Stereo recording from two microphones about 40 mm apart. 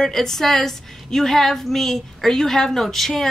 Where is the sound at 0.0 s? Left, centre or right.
Centre.